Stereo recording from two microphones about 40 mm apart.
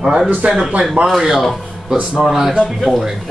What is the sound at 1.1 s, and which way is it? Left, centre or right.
A man's voice, centre.